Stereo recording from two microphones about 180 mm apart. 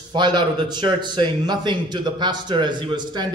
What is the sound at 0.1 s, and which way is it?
A man's voice, 25° right (ahead or behind).